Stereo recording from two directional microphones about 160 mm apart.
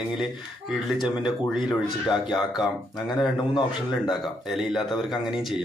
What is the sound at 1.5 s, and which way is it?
Speech, 30° left (ahead or behind).